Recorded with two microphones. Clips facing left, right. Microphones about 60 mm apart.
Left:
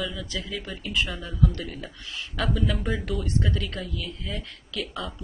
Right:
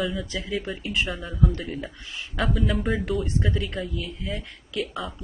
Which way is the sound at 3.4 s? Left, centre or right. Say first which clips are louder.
Right 2 dB; centre.